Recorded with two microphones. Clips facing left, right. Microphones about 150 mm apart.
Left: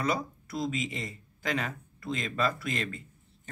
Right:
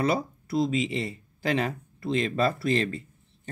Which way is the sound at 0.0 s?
30° right (ahead or behind).